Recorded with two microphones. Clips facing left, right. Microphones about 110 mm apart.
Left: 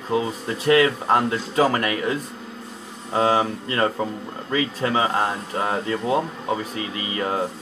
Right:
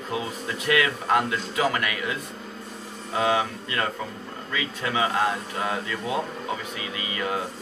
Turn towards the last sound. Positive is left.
turn(degrees=30)  # may be behind; listen again after turning